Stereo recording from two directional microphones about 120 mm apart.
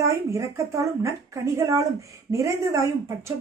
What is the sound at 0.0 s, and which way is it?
Speech, 25° right (ahead or behind).